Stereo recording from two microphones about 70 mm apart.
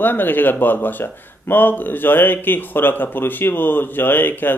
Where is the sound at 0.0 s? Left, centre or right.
Left.